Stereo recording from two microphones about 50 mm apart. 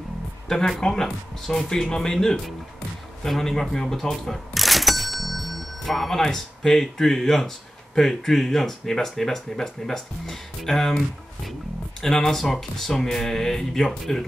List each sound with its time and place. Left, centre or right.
0.5 s a man's voice: centre
12.0 s speech: centre